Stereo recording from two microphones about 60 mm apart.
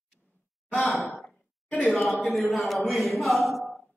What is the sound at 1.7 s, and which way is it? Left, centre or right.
Speech, left.